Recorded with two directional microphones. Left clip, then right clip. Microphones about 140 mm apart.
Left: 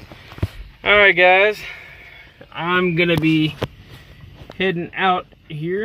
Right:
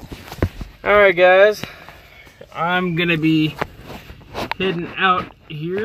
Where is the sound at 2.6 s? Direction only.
5° right (ahead or behind).